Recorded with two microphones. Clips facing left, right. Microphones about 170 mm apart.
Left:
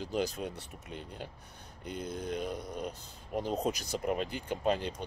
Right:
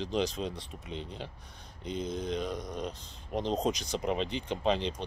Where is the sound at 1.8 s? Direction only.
10° left (ahead or behind).